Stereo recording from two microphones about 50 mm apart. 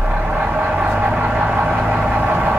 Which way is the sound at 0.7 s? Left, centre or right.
Centre.